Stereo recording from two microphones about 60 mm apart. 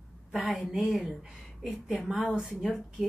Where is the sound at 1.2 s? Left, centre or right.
Centre.